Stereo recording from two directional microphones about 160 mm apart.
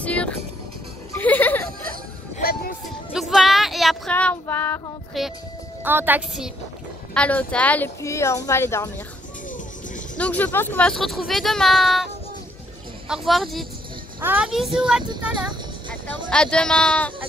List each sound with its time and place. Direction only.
0.0 s music: 10° left (ahead or behind)
2.4 s music: 70° left (ahead or behind)
3.1 s female singing: centre (ahead or behind)
5.2 s speech: centre (ahead or behind)
5.9 s a woman's voice: 10° right (ahead or behind)
7.2 s speech: 10° left (ahead or behind)
10.1 s speech: 10° left (ahead or behind)
13.1 s speech: centre (ahead or behind)
15.9 s speech: 5° left (ahead or behind)